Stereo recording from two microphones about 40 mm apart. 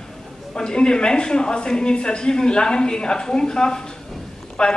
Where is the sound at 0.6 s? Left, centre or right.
Centre.